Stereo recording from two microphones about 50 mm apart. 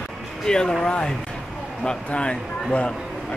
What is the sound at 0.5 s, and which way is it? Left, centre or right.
Speech, centre.